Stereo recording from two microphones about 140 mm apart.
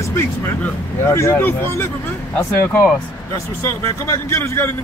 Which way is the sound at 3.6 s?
20° left (ahead or behind).